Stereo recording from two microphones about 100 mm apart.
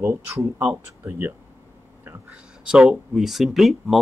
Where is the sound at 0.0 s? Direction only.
30° right (ahead or behind).